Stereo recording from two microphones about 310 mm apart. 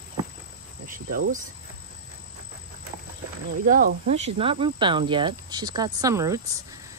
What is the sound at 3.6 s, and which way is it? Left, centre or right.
Speech, right.